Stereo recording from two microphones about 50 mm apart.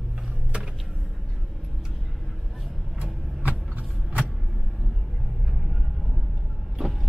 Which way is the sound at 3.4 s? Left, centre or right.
Right.